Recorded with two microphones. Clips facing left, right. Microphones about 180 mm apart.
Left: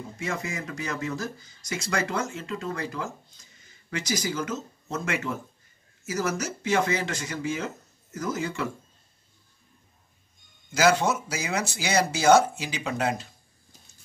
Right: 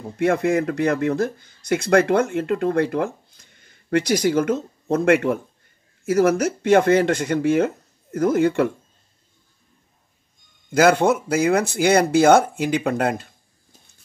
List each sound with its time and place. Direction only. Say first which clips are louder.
0.2 s speech: right 14 dB; 60° right (ahead or behind)
10.7 s speech: right 6 dB; 55° right (ahead or behind)